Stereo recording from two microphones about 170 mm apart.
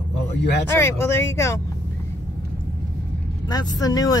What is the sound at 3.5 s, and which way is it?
Speech, 25° left (ahead or behind).